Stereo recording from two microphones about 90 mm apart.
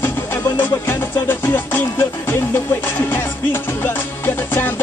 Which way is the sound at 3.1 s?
25° left (ahead or behind).